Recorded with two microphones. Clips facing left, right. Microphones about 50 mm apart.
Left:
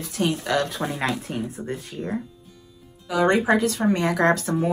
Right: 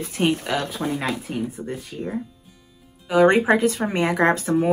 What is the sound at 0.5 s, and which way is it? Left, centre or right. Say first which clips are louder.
Speech: left 2 dB; centre.